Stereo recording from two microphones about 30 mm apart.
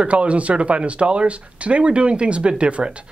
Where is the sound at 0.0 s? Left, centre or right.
Right.